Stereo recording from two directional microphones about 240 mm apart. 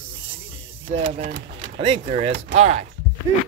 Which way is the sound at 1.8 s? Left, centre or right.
Right.